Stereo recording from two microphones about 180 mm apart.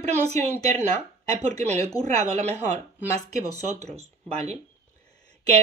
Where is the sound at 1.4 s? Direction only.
40° right (ahead or behind).